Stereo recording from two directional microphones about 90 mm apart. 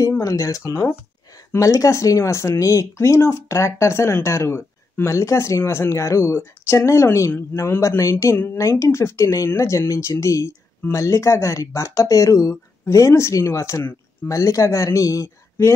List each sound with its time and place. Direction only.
0.2 s speech: 40° left (ahead or behind)